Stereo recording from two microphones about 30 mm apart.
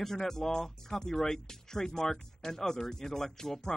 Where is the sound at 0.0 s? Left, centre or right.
Centre.